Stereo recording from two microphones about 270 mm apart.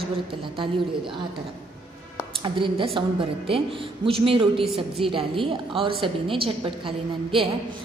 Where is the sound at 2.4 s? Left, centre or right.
Centre.